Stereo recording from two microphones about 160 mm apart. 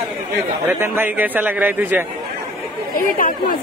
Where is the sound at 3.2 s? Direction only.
60° left (ahead or behind).